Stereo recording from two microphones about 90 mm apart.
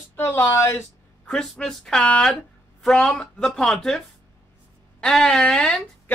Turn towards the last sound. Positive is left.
turn(degrees=10)  # may be behind; listen again after turning